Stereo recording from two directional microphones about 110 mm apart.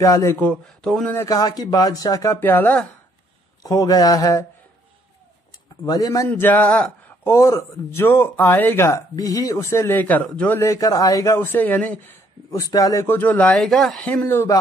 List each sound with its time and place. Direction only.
0.0 s speech: 30° left (ahead or behind)
0.4 s speech: 10° left (ahead or behind)
1.2 s speech: 35° left (ahead or behind)
2.4 s speech: 15° left (ahead or behind)
3.6 s speech: 35° left (ahead or behind)
5.9 s speech: 35° left (ahead or behind)
6.2 s a man's voice: 20° left (ahead or behind)
7.2 s speech: 25° left (ahead or behind)
10.6 s speech: 30° left (ahead or behind)
11.3 s speech: 20° left (ahead or behind)
12.4 s speech: 30° left (ahead or behind)
13.0 s speech: 20° left (ahead or behind)
13.6 s speech: 5° left (ahead or behind)
14.0 s speech: 20° left (ahead or behind)